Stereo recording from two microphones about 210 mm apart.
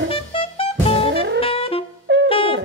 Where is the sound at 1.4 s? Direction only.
25° left (ahead or behind).